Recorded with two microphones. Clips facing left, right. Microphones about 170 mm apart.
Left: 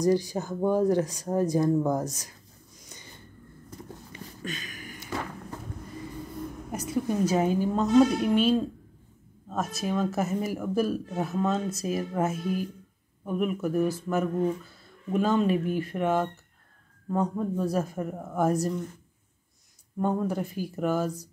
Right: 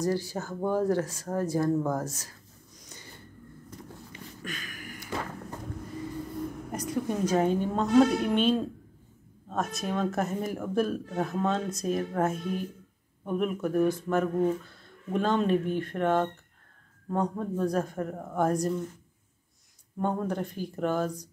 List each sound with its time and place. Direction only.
0.0 s speech: 15° left (ahead or behind)
4.4 s a sound: 25° left (ahead or behind)
6.7 s speech: 5° left (ahead or behind)
20.0 s speech: 5° left (ahead or behind)